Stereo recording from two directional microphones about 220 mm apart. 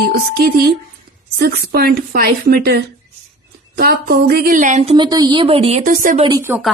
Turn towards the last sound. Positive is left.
turn(degrees=-15)  # may be behind; listen again after turning